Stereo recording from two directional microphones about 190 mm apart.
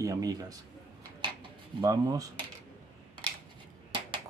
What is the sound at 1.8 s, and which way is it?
Speech, 20° right (ahead or behind).